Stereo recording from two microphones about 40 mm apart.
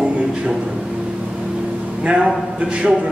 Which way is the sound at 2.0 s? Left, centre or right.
Right.